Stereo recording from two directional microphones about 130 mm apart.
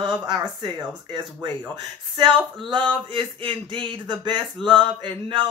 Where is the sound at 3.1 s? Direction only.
40° right (ahead or behind).